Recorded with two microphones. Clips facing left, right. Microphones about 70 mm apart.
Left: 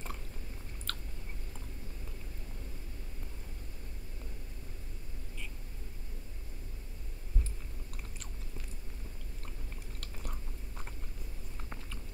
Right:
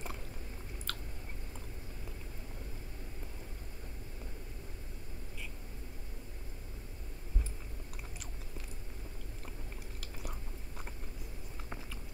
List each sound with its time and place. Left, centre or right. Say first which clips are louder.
0.9 s chewing: left 1 dB; centre